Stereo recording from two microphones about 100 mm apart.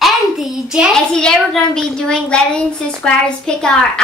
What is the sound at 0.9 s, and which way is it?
A child's voice, 5° left (ahead or behind).